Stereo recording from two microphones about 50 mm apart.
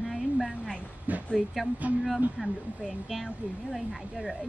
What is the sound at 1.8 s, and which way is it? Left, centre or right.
Speech, right.